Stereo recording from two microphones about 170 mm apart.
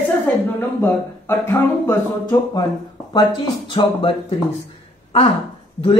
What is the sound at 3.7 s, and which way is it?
Speech, 30° left (ahead or behind).